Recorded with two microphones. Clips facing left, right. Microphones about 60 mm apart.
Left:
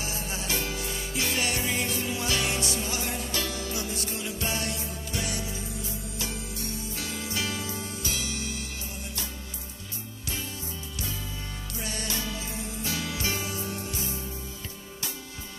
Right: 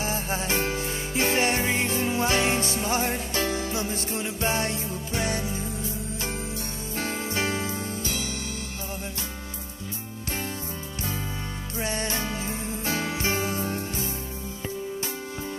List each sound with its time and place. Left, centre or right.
0.0 s music: right
7.0 s music: right
11.7 s music: right